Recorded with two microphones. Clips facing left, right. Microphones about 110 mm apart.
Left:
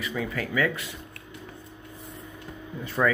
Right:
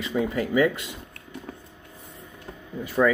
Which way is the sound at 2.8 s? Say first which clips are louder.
Right 4 dB; 10° right (ahead or behind).